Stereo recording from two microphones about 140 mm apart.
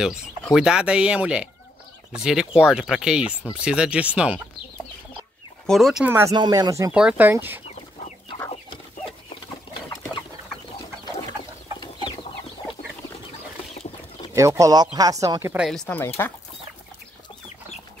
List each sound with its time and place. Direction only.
0.6 s speech: 5° right (ahead or behind)
5.7 s speech: centre (ahead or behind)
6.0 s speech: 15° right (ahead or behind)
6.3 s speech: 30° right (ahead or behind)
6.9 s speech: 10° right (ahead or behind)
11.8 s chicken: 35° left (ahead or behind)
14.3 s speech: 20° right (ahead or behind)
15.5 s speech: centre (ahead or behind)
16.2 s speech: 15° left (ahead or behind)